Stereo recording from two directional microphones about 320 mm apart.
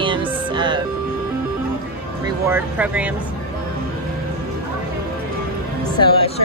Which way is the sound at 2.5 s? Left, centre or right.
Centre.